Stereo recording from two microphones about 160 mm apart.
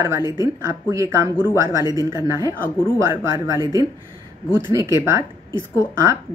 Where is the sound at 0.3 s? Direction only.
20° right (ahead or behind).